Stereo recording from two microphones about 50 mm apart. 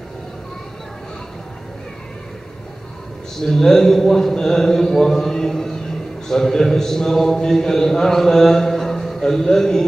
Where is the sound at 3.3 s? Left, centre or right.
Centre.